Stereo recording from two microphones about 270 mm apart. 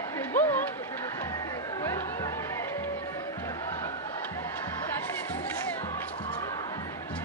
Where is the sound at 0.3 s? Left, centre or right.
Centre.